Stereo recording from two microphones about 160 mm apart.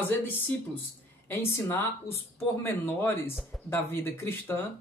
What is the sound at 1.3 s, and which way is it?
Speech, 15° left (ahead or behind).